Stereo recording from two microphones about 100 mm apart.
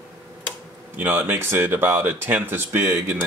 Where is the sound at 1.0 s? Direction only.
20° right (ahead or behind).